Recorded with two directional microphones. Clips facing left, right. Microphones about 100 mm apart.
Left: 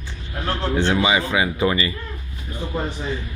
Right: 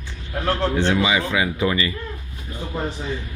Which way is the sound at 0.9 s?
20° left (ahead or behind).